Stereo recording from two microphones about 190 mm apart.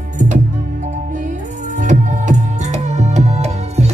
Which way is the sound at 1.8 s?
40° right (ahead or behind).